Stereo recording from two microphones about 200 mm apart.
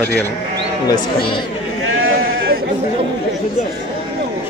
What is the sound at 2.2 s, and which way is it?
Sheep, 50° right (ahead or behind).